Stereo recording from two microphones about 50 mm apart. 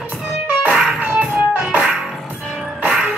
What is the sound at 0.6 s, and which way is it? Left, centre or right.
Music, right.